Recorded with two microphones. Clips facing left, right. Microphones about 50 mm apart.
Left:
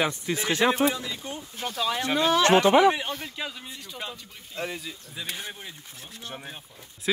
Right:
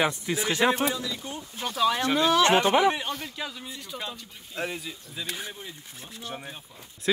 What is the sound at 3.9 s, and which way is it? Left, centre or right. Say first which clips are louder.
Speech: right 1 dB; centre.